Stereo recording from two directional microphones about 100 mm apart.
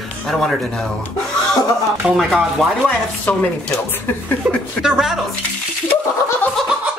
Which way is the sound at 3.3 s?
15° left (ahead or behind).